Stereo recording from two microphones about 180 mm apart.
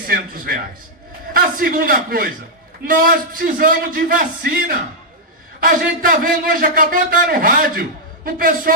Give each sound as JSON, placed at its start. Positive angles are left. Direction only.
{"t": 0.0, "sound": "a man's voice", "side_deg": -55}